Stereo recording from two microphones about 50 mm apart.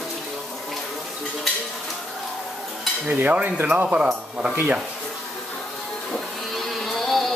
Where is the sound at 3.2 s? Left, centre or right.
Right.